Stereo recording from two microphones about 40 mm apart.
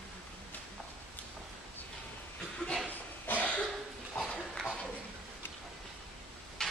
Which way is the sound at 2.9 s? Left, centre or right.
Left.